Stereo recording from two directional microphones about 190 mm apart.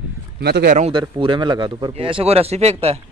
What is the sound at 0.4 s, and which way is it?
Speech, 55° right (ahead or behind).